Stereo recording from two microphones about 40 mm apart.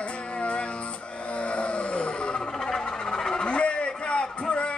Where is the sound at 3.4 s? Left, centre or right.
Left.